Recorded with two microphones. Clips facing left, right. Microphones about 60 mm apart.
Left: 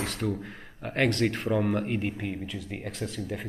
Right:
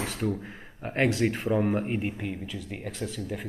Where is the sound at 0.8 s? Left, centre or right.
Right.